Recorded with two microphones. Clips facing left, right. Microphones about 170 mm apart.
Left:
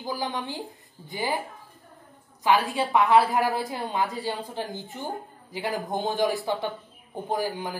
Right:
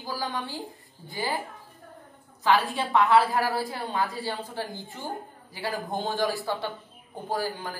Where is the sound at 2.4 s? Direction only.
15° left (ahead or behind).